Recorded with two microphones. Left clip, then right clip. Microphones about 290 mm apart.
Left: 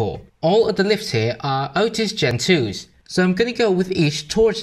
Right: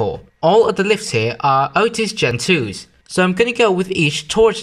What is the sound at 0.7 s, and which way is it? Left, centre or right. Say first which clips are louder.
Speech: right 3 dB; centre.